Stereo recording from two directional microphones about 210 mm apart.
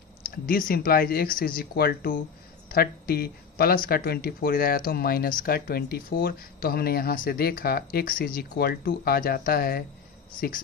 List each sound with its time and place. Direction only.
0.2 s speech: 45° left (ahead or behind)